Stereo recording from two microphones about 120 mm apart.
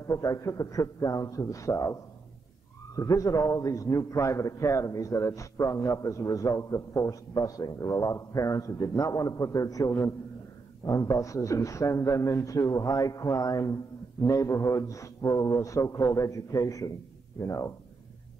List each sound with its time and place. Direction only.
0.0 s a man's voice: 25° left (ahead or behind)
3.0 s a man's voice: 30° left (ahead or behind)